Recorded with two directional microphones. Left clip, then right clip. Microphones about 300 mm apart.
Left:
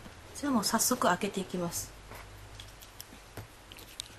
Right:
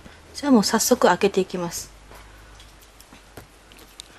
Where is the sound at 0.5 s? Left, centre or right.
Right.